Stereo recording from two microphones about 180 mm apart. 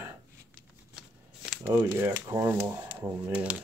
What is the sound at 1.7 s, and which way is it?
Speech, 10° right (ahead or behind).